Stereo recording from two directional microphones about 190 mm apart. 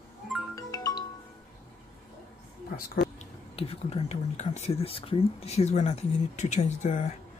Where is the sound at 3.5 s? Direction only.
30° left (ahead or behind).